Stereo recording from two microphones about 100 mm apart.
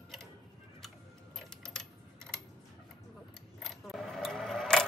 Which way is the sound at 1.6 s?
5° left (ahead or behind).